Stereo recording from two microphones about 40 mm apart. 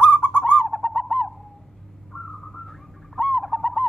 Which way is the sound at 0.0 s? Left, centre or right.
Left.